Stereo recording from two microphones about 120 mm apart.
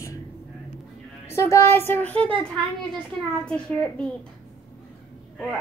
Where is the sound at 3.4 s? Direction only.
10° left (ahead or behind).